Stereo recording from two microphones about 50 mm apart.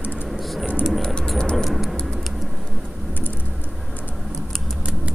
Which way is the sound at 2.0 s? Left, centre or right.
Centre.